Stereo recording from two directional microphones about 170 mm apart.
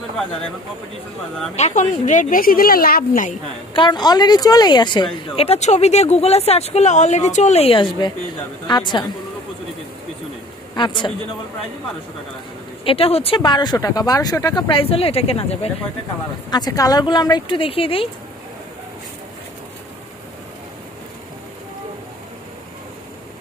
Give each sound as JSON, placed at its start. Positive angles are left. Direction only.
{"t": 1.5, "sound": "speech", "side_deg": 45}
{"t": 3.7, "sound": "a woman's voice", "side_deg": 25}
{"t": 10.8, "sound": "a woman's voice", "side_deg": 25}
{"t": 12.8, "sound": "speech", "side_deg": 35}
{"t": 16.4, "sound": "a woman's voice", "side_deg": 25}